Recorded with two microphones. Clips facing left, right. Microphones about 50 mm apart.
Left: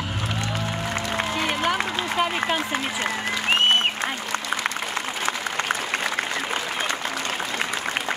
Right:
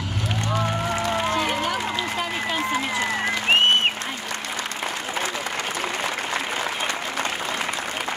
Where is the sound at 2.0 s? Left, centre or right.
Left.